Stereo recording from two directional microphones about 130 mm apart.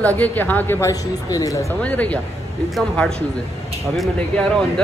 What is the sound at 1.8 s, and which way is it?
A man's voice, 10° left (ahead or behind).